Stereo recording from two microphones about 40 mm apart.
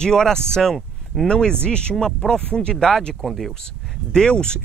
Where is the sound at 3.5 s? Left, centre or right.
Centre.